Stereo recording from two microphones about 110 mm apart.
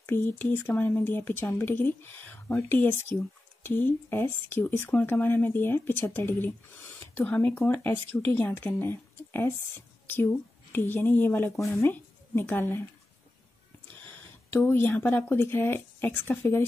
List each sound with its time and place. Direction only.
0.1 s a woman's voice: 20° left (ahead or behind)
14.5 s speech: 20° left (ahead or behind)